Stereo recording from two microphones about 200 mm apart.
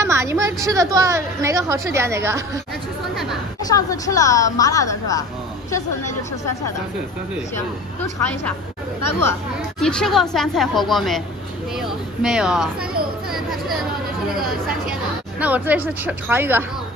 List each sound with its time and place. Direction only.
0.0 s a woman's voice: 15° right (ahead or behind)
3.6 s a woman's voice: 15° left (ahead or behind)
9.8 s speech: 5° left (ahead or behind)
11.8 s a sound: 5° right (ahead or behind)
14.9 s a woman's voice: 5° right (ahead or behind)